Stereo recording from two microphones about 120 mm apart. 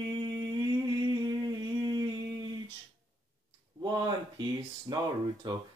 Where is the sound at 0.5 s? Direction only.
35° right (ahead or behind).